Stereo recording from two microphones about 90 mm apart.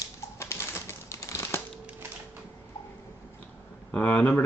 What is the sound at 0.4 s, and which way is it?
Typewriter, 30° left (ahead or behind).